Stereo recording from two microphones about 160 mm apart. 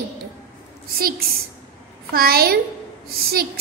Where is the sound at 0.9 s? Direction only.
70° right (ahead or behind).